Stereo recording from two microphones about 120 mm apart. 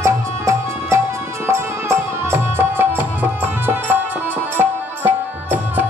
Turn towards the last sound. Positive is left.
turn(degrees=-15)  # may be behind; listen again after turning